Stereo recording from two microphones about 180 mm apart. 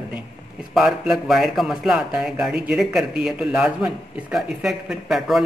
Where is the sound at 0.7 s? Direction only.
5° right (ahead or behind).